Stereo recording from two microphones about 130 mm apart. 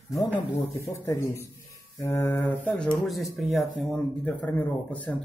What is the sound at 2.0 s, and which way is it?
Speech, 20° left (ahead or behind).